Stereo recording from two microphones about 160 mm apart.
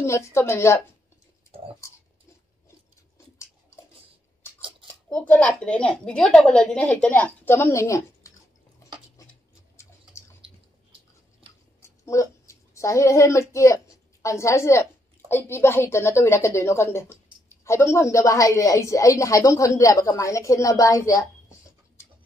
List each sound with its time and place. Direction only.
0.0 s a woman's voice: 15° left (ahead or behind)
4.6 s scissors: 35° right (ahead or behind)
5.1 s a woman's voice: 10° left (ahead or behind)
12.1 s a woman's voice: 20° left (ahead or behind)